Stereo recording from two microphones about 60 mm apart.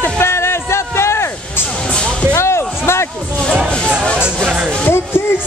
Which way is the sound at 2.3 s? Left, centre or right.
Left.